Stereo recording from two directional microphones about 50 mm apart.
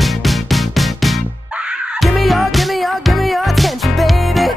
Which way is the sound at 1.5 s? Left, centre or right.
Centre.